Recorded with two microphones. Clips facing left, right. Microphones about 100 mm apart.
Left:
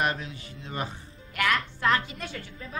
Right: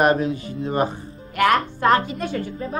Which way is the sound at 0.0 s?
45° right (ahead or behind).